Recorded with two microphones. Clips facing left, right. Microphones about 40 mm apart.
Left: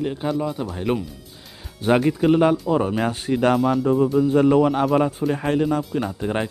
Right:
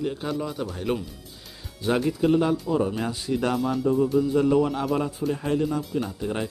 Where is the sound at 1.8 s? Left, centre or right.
Left.